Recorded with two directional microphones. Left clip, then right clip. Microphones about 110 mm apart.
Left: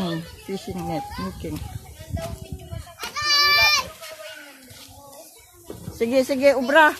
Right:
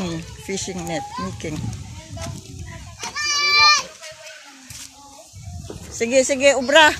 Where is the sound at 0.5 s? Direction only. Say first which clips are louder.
Right 5 dB; centre (ahead or behind).